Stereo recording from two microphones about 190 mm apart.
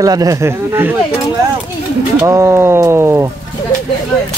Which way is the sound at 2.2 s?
15° right (ahead or behind).